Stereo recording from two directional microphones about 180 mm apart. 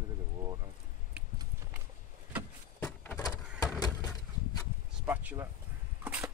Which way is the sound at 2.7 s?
10° left (ahead or behind).